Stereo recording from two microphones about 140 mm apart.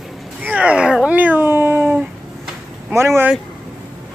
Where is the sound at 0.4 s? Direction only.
10° right (ahead or behind).